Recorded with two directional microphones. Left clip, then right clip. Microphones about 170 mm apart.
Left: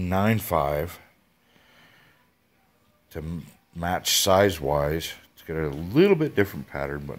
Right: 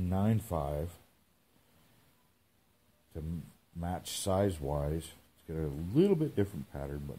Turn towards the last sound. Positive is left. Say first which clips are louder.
# left 12 dB
turn(degrees=10)  # may be behind; listen again after turning